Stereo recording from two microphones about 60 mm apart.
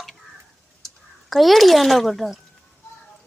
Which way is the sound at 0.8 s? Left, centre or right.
Centre.